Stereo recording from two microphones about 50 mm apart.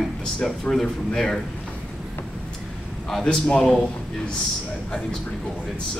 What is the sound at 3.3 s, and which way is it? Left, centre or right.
Speech, centre.